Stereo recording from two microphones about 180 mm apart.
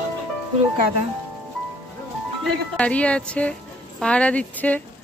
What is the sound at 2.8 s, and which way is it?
Speech, 5° left (ahead or behind).